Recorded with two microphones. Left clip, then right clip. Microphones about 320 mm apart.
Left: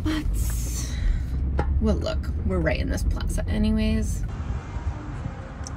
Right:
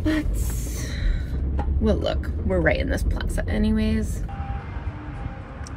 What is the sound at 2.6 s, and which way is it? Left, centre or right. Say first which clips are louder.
A woman's voice: right 5 dB; centre.